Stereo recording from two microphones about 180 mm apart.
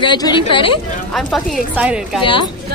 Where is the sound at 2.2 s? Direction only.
30° left (ahead or behind).